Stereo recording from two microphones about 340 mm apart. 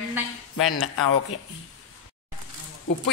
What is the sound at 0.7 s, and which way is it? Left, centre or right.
Speech, left.